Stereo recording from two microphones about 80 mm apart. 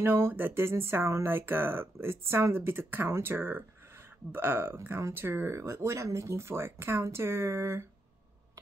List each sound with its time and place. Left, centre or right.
0.0 s speech: right